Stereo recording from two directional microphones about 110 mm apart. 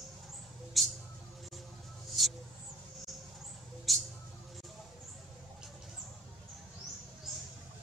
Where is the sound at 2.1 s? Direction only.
Centre (ahead or behind).